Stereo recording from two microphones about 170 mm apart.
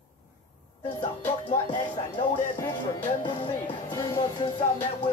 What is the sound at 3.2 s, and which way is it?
Speech, 30° left (ahead or behind).